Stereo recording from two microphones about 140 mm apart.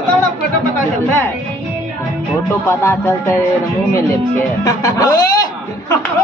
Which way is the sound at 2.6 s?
15° left (ahead or behind).